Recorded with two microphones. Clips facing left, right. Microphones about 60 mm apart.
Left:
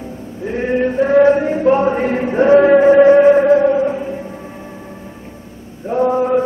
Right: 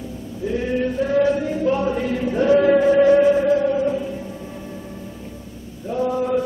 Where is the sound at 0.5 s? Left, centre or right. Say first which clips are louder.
Left 5 dB; left.